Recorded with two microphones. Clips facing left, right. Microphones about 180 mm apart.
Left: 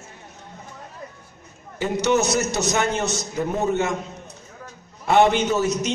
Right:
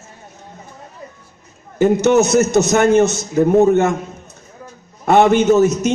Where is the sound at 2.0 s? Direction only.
50° right (ahead or behind).